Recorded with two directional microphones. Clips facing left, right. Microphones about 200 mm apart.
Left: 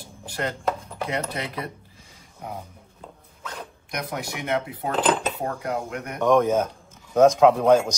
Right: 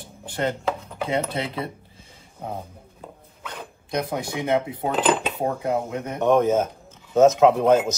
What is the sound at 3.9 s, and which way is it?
Speech, 25° right (ahead or behind).